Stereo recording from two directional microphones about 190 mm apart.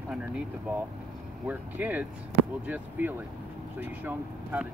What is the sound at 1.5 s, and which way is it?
Speech, 10° right (ahead or behind).